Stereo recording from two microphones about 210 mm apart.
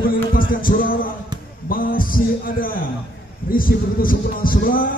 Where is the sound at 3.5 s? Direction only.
40° left (ahead or behind).